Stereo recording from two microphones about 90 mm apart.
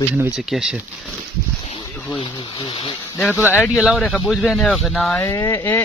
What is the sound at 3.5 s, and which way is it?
Speech, 25° left (ahead or behind).